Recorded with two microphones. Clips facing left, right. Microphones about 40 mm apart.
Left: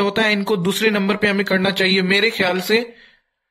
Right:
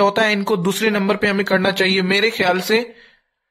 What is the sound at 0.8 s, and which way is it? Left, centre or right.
Speech, left.